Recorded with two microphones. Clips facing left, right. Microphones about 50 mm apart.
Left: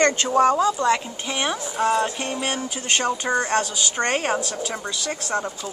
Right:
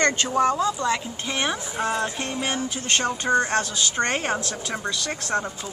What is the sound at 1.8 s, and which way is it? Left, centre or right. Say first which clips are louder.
Music: left 5 dB; left.